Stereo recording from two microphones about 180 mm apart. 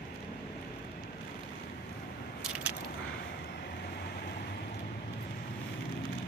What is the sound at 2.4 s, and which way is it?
Keys jangling, 5° right (ahead or behind).